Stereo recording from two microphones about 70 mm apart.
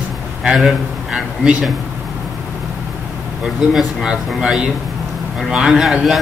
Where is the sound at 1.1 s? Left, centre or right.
Centre.